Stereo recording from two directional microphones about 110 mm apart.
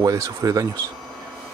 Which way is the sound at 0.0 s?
30° right (ahead or behind).